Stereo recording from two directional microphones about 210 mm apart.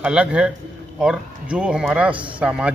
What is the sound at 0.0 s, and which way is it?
A man's voice, 5° right (ahead or behind).